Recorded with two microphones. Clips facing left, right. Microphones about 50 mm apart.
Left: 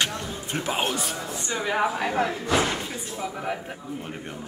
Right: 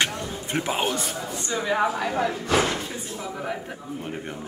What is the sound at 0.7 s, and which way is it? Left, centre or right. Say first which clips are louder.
Speech: right 1 dB; centre.